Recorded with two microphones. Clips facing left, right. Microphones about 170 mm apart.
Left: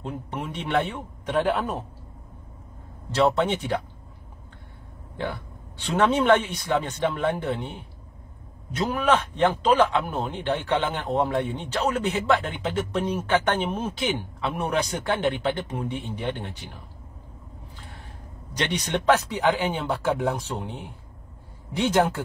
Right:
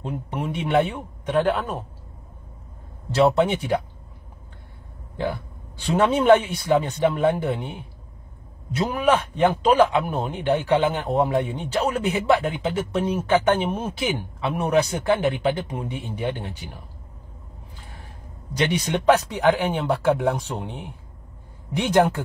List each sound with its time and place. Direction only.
0.0 s a man's voice: 10° right (ahead or behind)
3.2 s a man's voice: 10° right (ahead or behind)
5.9 s a man's voice: 10° right (ahead or behind)
18.6 s a man's voice: 10° right (ahead or behind)